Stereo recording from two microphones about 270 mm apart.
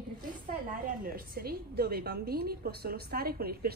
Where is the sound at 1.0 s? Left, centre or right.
Right.